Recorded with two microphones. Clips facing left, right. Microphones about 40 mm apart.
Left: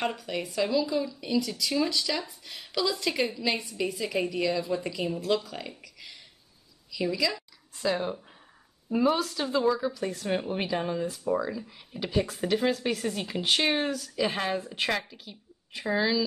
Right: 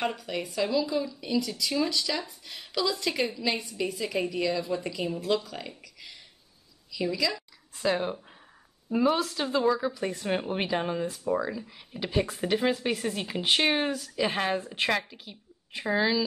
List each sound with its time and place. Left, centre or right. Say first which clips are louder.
0.0 s a woman's voice: even; centre
7.8 s speech: right 1 dB; centre
8.9 s speech: even; centre
9.8 s speech: even; right
11.2 s speech: even; centre
12.1 s speech: even; centre